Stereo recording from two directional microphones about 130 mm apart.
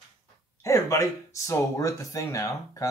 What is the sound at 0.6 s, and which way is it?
Speech, 25° left (ahead or behind).